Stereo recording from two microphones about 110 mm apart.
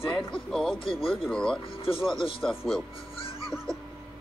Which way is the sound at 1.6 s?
55° left (ahead or behind).